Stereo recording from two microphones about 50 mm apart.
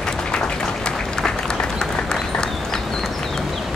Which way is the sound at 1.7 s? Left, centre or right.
Centre.